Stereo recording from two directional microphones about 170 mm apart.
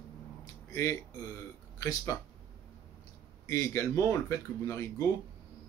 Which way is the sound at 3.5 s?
15° left (ahead or behind).